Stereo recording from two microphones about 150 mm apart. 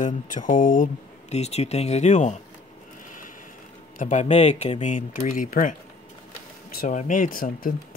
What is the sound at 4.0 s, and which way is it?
Speech, 50° left (ahead or behind).